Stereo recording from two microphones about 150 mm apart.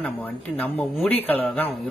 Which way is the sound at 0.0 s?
10° left (ahead or behind).